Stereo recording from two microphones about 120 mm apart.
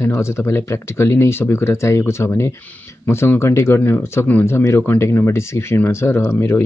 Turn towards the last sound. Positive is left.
turn(degrees=20)  # may be behind; listen again after turning